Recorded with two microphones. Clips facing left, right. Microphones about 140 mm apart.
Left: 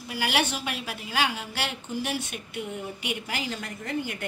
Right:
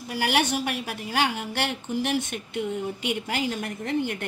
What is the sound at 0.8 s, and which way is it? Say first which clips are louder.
Speech: right 2 dB; 50° right (ahead or behind).